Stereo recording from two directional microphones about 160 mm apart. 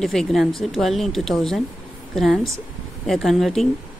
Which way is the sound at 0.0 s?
Centre (ahead or behind).